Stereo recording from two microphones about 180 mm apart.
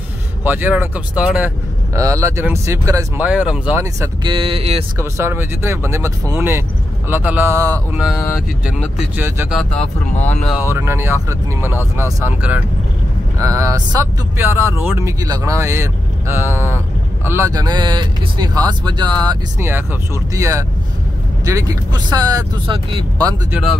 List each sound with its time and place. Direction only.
0.4 s speech: 10° right (ahead or behind)
2.0 s speech: 15° right (ahead or behind)
4.9 s speech: 15° right (ahead or behind)
9.5 s speech: 5° left (ahead or behind)
10.7 s speech: 15° right (ahead or behind)